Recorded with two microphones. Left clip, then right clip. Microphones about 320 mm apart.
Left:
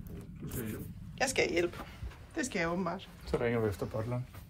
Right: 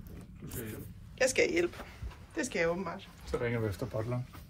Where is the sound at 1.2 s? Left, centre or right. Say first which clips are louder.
Right 2 dB; centre.